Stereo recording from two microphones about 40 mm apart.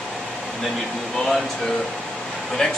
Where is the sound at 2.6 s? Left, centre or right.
Centre.